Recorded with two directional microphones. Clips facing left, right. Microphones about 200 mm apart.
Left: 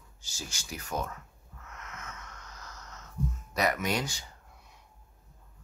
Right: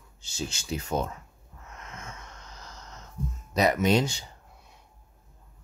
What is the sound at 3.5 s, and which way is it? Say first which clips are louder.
Speech: right 7 dB; 25° right (ahead or behind).